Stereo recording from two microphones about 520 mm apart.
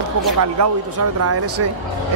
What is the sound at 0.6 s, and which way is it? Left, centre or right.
Speech, right.